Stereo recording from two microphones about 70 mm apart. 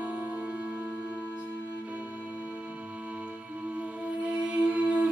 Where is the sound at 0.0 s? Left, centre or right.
Right.